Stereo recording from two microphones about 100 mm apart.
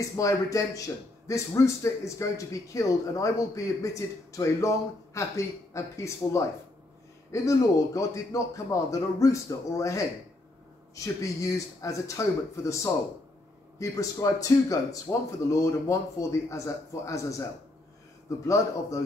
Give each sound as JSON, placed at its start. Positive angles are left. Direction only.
{"t": 0.0, "sound": "a man's voice", "side_deg": 35}
{"t": 11.1, "sound": "a man's voice", "side_deg": 35}
{"t": 18.5, "sound": "a man's voice", "side_deg": 30}